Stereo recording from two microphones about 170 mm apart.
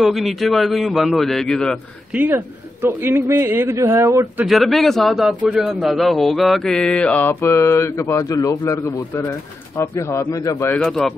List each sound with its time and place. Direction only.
0.0 s a man's voice: centre (ahead or behind)
2.1 s a man's voice: 10° right (ahead or behind)
4.5 s a man's voice: centre (ahead or behind); by 10.8 s 20° left (ahead or behind)
10.8 s a man's voice: centre (ahead or behind)